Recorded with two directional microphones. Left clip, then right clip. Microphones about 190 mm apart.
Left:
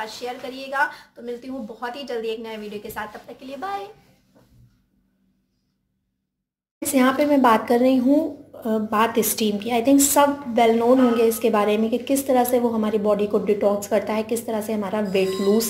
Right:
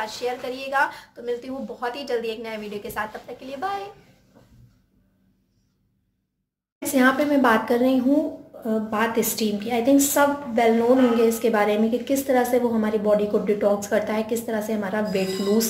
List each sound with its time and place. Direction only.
0.0 s a woman's voice: centre (ahead or behind)
6.8 s a woman's voice: 20° left (ahead or behind)